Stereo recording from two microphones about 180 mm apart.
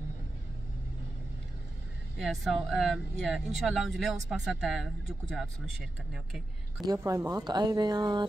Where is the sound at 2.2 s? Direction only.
Centre (ahead or behind).